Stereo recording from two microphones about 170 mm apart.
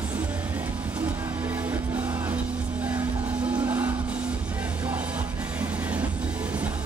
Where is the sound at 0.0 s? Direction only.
10° right (ahead or behind).